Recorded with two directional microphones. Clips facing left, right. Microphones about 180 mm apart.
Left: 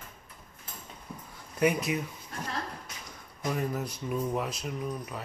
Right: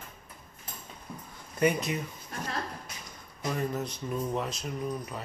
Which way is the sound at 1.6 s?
5° left (ahead or behind).